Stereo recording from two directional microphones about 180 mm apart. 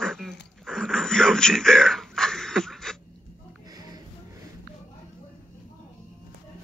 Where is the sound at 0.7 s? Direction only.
5° left (ahead or behind).